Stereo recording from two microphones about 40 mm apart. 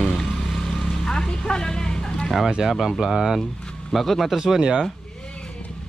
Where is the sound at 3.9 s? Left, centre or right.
Centre.